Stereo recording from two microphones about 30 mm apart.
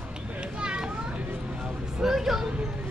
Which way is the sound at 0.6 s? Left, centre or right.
Right.